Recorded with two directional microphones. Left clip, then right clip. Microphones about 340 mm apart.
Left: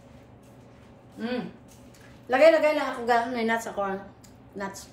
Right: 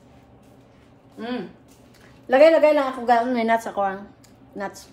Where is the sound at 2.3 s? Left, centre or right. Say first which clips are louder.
Right 5 dB; right.